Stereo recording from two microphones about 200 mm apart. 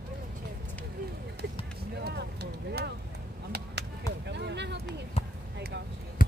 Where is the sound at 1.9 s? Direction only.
55° right (ahead or behind).